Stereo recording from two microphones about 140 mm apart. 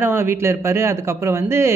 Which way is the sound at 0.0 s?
15° right (ahead or behind).